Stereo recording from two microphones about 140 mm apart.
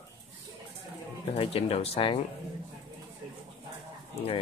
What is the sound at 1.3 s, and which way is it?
Speech, 45° left (ahead or behind).